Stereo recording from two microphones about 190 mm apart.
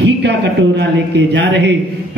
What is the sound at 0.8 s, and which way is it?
Speech, 65° right (ahead or behind).